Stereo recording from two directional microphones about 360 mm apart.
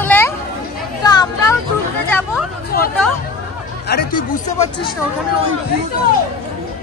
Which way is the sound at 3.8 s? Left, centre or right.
Left.